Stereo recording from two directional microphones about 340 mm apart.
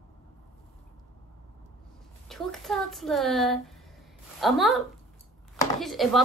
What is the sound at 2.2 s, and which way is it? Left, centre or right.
Speech, centre.